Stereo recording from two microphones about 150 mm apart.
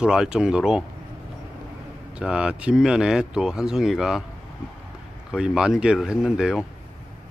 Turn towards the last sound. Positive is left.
turn(degrees=-5)  # may be behind; listen again after turning